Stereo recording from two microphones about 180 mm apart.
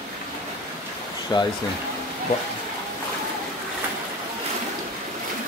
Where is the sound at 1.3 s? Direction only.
20° left (ahead or behind).